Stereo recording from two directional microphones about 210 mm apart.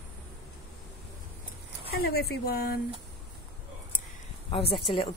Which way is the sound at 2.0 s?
50° left (ahead or behind).